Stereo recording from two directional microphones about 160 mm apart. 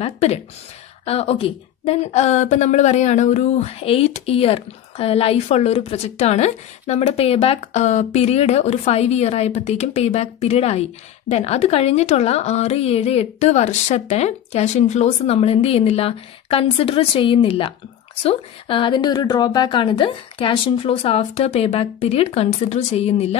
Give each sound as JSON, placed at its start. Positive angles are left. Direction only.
{"t": 0.0, "sound": "a woman's voice", "side_deg": 40}